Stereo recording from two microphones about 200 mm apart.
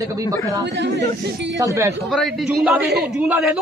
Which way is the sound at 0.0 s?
15° right (ahead or behind).